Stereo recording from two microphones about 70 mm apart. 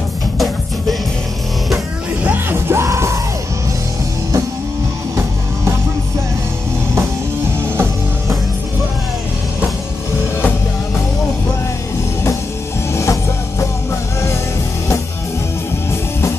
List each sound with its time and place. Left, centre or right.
2.5 s music: right
7.6 s music: right
12.9 s music: left
15.9 s music: left